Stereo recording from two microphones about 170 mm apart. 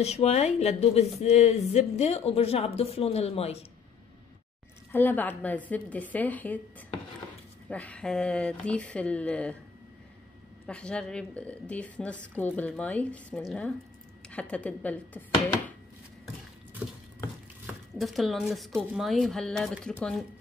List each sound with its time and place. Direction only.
0.0 s speech: 40° left (ahead or behind)
4.9 s speech: 10° left (ahead or behind)
7.7 s speech: 5° left (ahead or behind)
10.7 s speech: 5° left (ahead or behind)
17.6 s speech: centre (ahead or behind)